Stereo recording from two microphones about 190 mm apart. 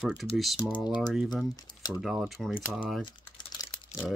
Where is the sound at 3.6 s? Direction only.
20° left (ahead or behind).